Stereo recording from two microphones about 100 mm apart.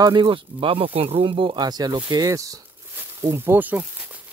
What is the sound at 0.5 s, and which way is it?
Speech, 65° right (ahead or behind).